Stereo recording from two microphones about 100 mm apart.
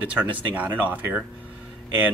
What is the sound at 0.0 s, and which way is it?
Speech, 15° right (ahead or behind).